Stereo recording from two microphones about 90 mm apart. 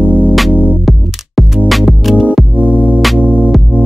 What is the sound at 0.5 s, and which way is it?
Music, 20° right (ahead or behind).